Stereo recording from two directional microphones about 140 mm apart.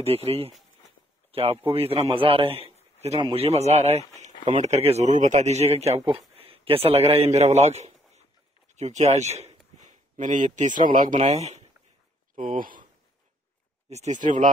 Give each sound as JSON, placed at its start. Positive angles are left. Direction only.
{"t": 0.0, "sound": "a man's voice", "side_deg": -45}
{"t": 12.5, "sound": "speech", "side_deg": -80}
{"t": 13.8, "sound": "speech", "side_deg": -55}